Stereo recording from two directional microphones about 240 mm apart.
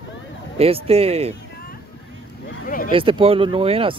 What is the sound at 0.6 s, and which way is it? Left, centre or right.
Speech, right.